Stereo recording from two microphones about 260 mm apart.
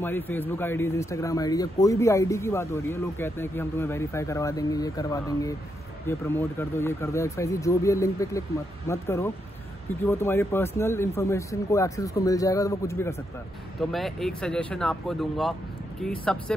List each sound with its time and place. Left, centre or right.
0.0 s a man's voice: centre
13.7 s speech: centre